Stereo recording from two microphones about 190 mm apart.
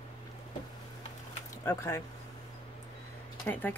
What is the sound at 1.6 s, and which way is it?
Speech, 15° left (ahead or behind).